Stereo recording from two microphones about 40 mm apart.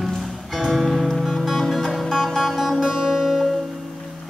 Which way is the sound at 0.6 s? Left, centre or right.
Centre.